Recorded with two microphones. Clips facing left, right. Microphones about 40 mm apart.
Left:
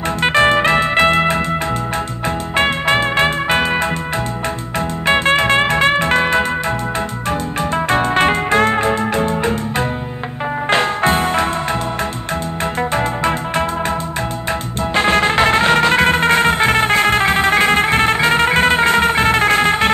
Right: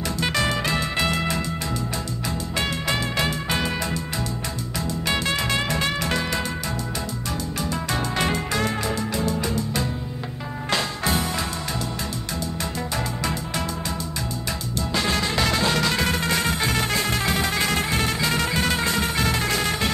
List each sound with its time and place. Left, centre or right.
0.2 s music: left
5.0 s music: left
7.7 s music: left
12.9 s music: left
15.0 s music: left